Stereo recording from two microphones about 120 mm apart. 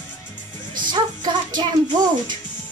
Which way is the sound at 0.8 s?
40° right (ahead or behind).